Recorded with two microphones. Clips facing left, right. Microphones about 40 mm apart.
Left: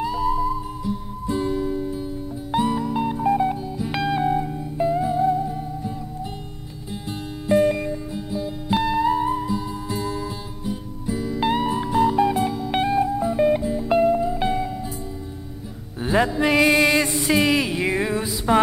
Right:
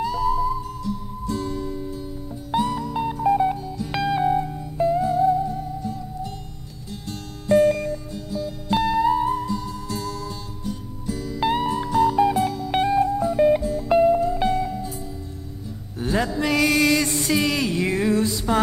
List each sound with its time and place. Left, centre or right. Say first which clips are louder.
0.0 s music: even; centre
16.0 s music: left 3 dB; left